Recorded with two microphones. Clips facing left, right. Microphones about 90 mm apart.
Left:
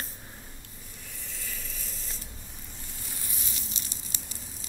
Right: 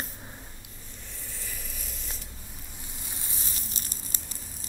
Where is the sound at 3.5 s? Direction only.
45° right (ahead or behind).